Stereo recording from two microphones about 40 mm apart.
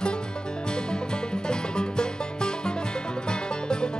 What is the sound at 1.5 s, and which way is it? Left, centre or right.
Music, left.